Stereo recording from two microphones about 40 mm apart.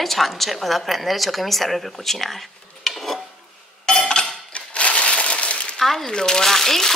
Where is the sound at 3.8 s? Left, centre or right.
Centre.